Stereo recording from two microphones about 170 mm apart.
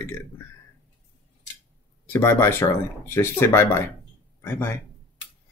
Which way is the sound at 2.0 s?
15° left (ahead or behind).